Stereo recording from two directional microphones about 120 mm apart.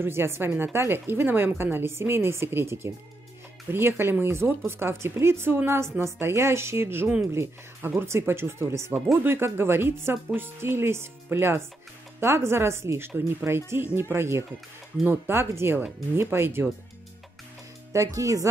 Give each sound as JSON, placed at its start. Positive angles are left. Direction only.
{"t": 0.0, "sound": "a woman's voice", "side_deg": -20}
{"t": 17.9, "sound": "a woman's voice", "side_deg": -25}